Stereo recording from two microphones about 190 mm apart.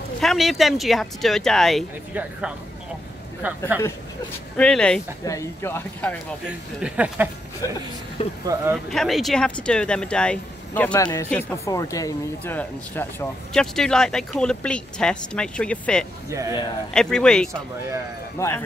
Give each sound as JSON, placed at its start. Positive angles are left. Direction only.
{"t": 0.2, "sound": "speech", "side_deg": 0}
{"t": 4.6, "sound": "speech", "side_deg": 5}
{"t": 5.2, "sound": "speech", "side_deg": 15}
{"t": 6.8, "sound": "speech", "side_deg": -10}
{"t": 8.2, "sound": "speech", "side_deg": 30}
{"t": 8.7, "sound": "speech", "side_deg": 0}
{"t": 11.0, "sound": "speech", "side_deg": 20}
{"t": 16.3, "sound": "speech", "side_deg": -15}
{"t": 16.9, "sound": "speech", "side_deg": 5}